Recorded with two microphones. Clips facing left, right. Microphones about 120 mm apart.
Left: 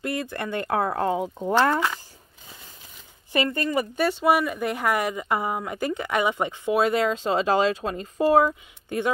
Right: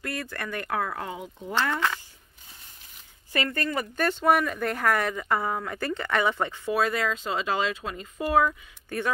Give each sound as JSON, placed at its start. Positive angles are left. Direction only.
{"t": 0.0, "sound": "speech", "side_deg": 20}
{"t": 3.3, "sound": "speech", "side_deg": 15}
{"t": 8.8, "sound": "speech", "side_deg": 20}